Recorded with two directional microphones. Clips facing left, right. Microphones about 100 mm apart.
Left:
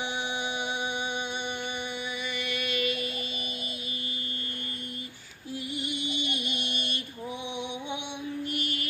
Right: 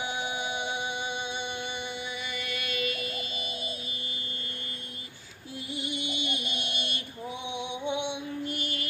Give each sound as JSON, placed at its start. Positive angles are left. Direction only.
{"t": 2.4, "sound": "music", "side_deg": -40}
{"t": 8.5, "sound": "child singing", "side_deg": -35}